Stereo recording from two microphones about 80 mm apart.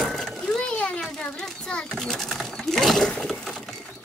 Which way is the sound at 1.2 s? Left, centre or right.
Centre.